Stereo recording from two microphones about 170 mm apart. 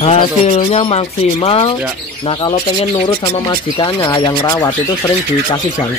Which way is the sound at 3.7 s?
25° left (ahead or behind).